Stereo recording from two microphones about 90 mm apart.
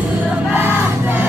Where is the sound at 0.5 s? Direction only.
20° right (ahead or behind).